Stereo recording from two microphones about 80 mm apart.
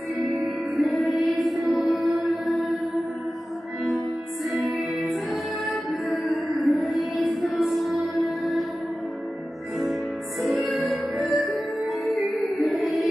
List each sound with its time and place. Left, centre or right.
0.2 s music: centre
4.6 s music: centre
10.4 s music: centre